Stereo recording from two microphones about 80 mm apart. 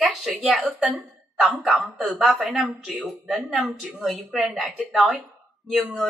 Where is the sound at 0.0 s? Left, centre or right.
Centre.